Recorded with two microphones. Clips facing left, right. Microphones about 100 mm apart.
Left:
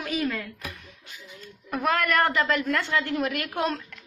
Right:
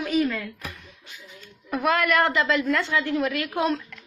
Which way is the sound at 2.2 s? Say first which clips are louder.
Right 2 dB; 45° left (ahead or behind).